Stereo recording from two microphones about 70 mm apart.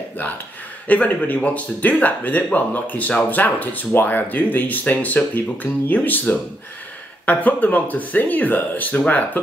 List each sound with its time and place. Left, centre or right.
0.8 s speech: left